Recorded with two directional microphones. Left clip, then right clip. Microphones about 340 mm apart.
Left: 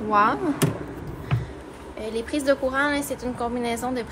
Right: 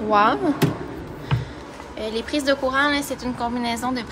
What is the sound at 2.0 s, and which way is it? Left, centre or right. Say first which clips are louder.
A woman's voice: right 3 dB; centre.